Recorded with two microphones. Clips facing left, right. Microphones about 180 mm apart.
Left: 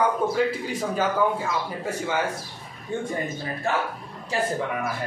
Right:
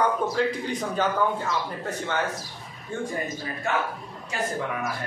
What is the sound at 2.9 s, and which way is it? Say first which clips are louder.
Speech: left 2 dB; 20° left (ahead or behind).